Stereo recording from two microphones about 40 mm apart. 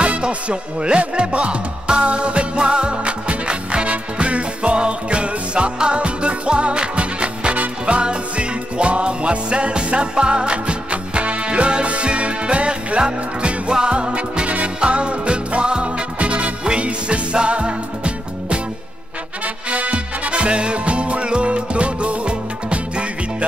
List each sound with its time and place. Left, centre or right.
0.0 s music: right